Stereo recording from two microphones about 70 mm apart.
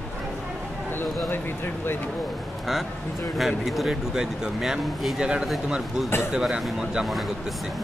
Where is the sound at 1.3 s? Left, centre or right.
Left.